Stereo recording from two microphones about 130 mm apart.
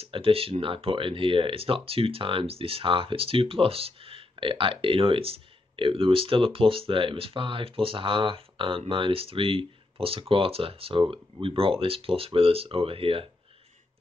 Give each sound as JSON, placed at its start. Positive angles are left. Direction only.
{"t": 0.0, "sound": "speech", "side_deg": -45}